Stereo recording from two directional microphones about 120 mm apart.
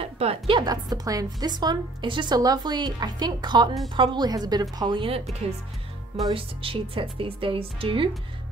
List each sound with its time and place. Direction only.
0.0 s a woman's voice: 55° right (ahead or behind)
6.3 s speech: 50° right (ahead or behind)